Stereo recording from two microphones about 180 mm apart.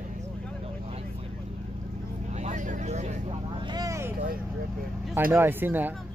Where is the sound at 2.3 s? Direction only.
40° right (ahead or behind).